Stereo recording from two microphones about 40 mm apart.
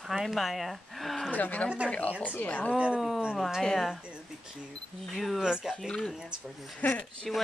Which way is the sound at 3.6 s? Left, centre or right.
Centre.